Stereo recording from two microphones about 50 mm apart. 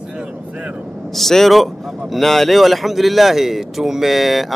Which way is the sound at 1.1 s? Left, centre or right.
Centre.